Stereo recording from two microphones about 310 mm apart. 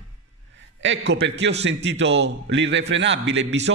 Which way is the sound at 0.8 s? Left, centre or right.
Right.